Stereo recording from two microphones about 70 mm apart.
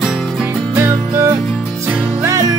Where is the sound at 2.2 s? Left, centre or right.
Right.